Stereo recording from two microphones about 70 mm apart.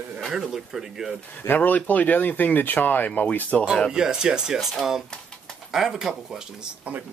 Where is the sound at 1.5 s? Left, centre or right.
Left.